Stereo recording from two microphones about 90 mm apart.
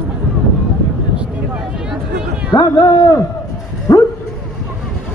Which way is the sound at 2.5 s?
55° left (ahead or behind).